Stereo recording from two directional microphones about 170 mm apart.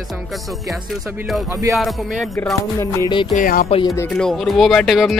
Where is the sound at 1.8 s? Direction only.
Centre (ahead or behind).